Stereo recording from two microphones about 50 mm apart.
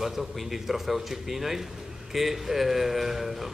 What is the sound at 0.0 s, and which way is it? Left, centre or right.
A man's voice, centre.